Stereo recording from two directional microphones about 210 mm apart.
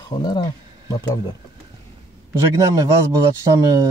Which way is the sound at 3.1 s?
15° right (ahead or behind).